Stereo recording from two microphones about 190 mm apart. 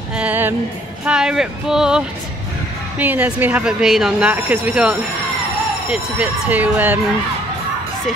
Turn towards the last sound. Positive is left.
turn(degrees=-10)  # may be behind; listen again after turning